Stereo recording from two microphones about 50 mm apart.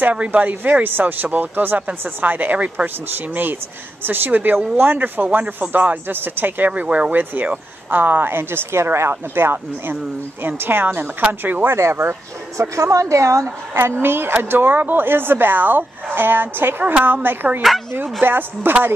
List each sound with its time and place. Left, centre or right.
0.0 s speech: right
4.0 s speech: right
6.7 s speech: right
11.7 s speech: right
17.6 s speech: centre
18.2 s speech: right